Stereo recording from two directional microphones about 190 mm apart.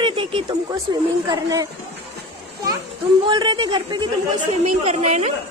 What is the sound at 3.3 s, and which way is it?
Speech, 25° right (ahead or behind).